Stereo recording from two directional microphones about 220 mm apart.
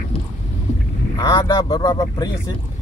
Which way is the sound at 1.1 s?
15° left (ahead or behind).